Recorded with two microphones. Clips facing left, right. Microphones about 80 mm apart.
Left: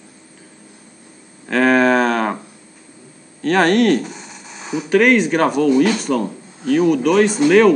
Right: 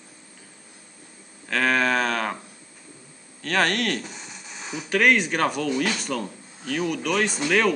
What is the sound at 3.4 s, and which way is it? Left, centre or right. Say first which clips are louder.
Speech: left 10 dB; centre.